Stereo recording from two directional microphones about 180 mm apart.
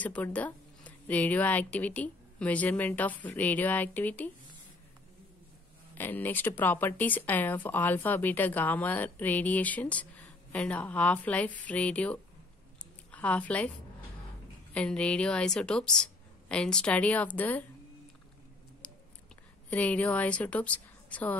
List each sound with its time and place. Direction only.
0.0 s speech: 10° left (ahead or behind)
5.9 s a woman's voice: 10° left (ahead or behind)
14.7 s a woman's voice: 5° left (ahead or behind)
19.7 s speech: 10° left (ahead or behind)